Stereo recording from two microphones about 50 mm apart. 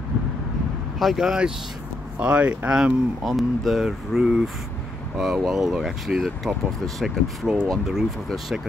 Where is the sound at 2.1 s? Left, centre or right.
Right.